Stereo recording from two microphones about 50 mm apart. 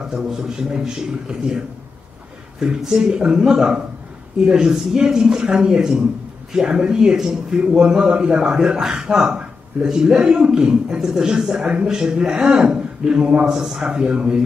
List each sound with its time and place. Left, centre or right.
0.1 s speech: centre
2.6 s speech: centre